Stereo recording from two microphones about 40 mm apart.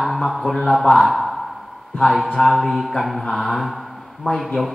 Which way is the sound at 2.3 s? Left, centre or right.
Centre.